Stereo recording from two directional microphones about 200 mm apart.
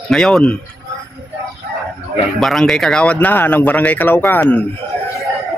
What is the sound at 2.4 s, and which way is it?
Speech, centre (ahead or behind).